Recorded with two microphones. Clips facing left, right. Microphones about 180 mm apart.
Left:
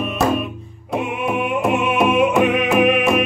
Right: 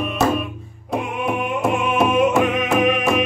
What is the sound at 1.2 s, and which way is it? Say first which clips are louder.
Music: left 2 dB; centre (ahead or behind).